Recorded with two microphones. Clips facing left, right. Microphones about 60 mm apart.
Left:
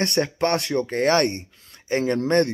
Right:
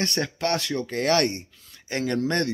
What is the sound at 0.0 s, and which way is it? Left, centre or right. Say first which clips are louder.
Speech: left 4 dB; left.